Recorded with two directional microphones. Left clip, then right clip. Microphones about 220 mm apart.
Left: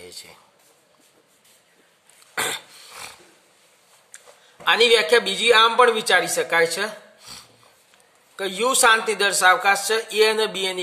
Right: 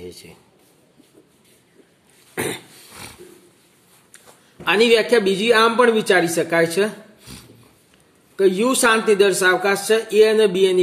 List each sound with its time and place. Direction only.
0.0 s speech: 15° left (ahead or behind)
2.3 s a sound: 10° left (ahead or behind)
4.6 s a man's voice: 5° left (ahead or behind)